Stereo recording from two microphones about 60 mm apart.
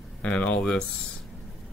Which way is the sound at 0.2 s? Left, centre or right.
Left.